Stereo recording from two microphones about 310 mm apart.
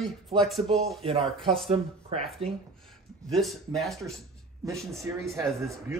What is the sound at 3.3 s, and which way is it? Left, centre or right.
A man's voice, centre.